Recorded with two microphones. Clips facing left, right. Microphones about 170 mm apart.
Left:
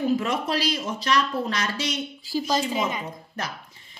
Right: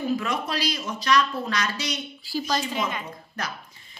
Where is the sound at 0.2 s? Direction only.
25° left (ahead or behind).